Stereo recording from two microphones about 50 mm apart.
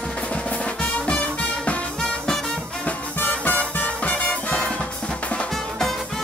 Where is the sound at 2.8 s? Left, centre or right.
Left.